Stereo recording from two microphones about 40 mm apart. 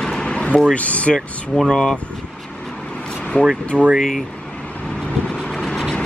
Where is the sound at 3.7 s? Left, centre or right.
Centre.